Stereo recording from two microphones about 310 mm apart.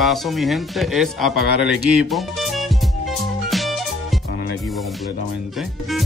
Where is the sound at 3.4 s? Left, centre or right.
Centre.